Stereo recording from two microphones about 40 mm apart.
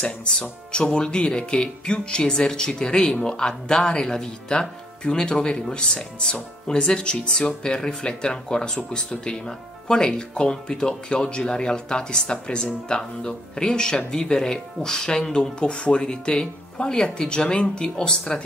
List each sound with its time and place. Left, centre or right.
0.0 s speech: left